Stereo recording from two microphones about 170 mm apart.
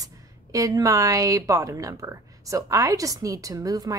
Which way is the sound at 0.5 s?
20° right (ahead or behind).